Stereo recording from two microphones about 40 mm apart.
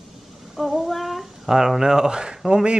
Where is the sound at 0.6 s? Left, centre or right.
Centre.